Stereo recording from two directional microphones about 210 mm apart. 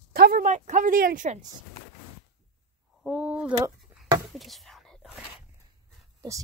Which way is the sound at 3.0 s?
5° right (ahead or behind).